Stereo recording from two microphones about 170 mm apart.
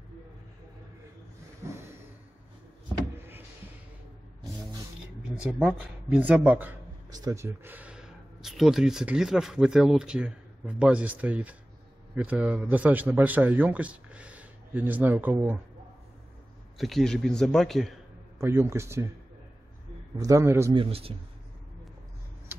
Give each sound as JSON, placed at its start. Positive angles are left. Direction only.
{"t": 1.7, "sound": "a sound", "side_deg": -15}
{"t": 3.2, "sound": "power windows", "side_deg": -10}
{"t": 5.3, "sound": "a man's voice", "side_deg": -5}
{"t": 7.1, "sound": "a man's voice", "side_deg": -20}
{"t": 16.7, "sound": "a man's voice", "side_deg": 0}
{"t": 18.4, "sound": "a man's voice", "side_deg": -15}
{"t": 20.2, "sound": "a man's voice", "side_deg": -20}
{"t": 20.7, "sound": "a man's voice", "side_deg": -30}
{"t": 22.5, "sound": "a sound", "side_deg": -15}